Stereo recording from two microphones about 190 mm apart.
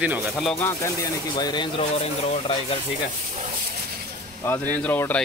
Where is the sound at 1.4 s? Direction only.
25° left (ahead or behind).